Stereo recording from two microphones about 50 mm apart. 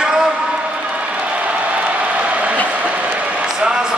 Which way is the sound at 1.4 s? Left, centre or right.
Right.